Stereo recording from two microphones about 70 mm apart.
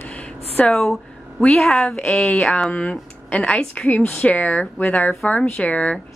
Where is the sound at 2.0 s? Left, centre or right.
Left.